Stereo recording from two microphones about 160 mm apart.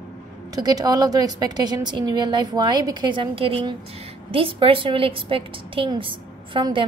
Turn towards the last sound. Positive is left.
turn(degrees=-30)  # may be behind; listen again after turning